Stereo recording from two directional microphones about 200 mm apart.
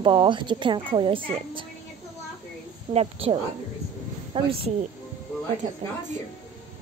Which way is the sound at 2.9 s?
30° right (ahead or behind).